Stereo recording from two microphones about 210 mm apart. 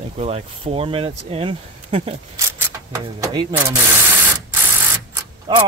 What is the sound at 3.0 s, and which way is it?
Speech, 20° right (ahead or behind).